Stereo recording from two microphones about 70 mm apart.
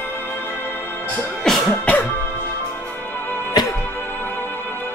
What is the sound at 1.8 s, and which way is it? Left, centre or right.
Music, centre.